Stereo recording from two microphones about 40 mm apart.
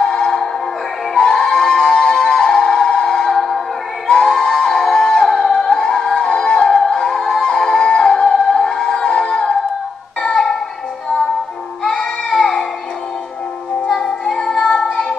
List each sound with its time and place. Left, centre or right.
0.0 s music: centre
8.9 s a sound: centre
10.2 s music: centre
11.8 s goat: centre
13.8 s music: centre